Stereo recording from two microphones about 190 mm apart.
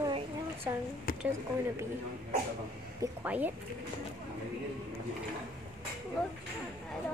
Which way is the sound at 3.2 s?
10° right (ahead or behind).